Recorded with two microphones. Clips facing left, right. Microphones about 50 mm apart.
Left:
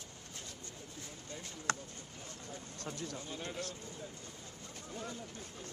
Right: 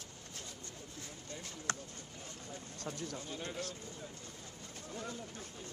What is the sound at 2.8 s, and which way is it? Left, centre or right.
Speech, left.